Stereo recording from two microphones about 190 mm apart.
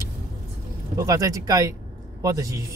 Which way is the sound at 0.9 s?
15° right (ahead or behind).